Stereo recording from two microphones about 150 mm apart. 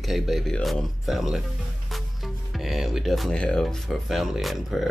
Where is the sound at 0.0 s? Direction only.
Centre (ahead or behind).